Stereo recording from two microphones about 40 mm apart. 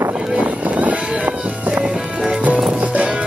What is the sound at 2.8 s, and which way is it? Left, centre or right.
Music, right.